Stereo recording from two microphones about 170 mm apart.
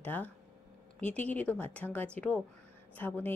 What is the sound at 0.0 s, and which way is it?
A woman's voice, 10° left (ahead or behind).